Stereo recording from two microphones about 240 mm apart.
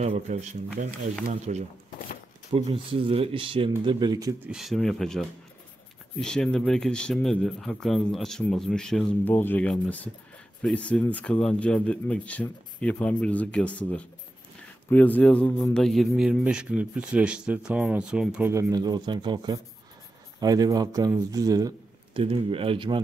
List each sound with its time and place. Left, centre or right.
0.0 s speech: right
2.5 s speech: right
4.5 s a man's voice: centre; by 22.9 s right